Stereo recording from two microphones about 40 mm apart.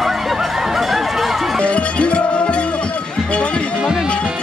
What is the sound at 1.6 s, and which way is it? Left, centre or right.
Music, left.